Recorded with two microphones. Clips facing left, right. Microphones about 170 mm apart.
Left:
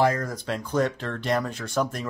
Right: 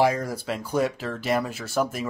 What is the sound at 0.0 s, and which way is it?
Speech, 10° right (ahead or behind).